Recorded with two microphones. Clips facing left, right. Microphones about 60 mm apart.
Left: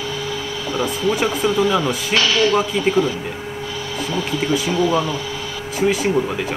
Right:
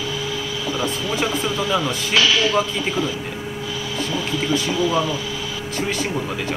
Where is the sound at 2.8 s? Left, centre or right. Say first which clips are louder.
Left 5 dB; left.